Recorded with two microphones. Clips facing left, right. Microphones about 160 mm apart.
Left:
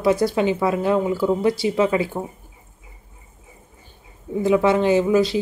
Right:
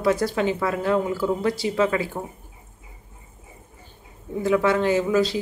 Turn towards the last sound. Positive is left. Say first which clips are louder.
# left 3 dB
turn(degrees=20)  # may be behind; listen again after turning